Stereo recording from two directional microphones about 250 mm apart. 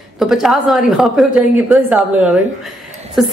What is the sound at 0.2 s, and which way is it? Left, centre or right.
A woman's voice, centre.